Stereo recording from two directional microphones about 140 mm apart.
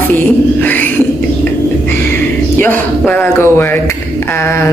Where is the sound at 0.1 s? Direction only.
10° left (ahead or behind).